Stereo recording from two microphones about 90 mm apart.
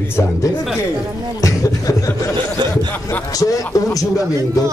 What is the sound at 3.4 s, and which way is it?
Speech, 40° left (ahead or behind).